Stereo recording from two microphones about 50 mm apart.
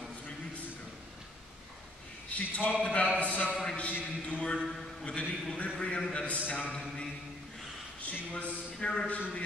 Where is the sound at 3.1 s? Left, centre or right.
Left.